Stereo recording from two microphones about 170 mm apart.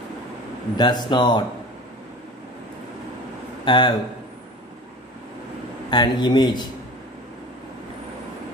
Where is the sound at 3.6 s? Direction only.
30° left (ahead or behind).